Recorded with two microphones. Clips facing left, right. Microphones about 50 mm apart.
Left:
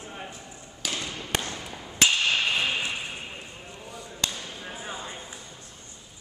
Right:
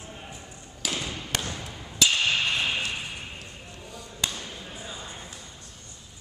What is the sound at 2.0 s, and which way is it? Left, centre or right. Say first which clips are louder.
Whip: even; centre.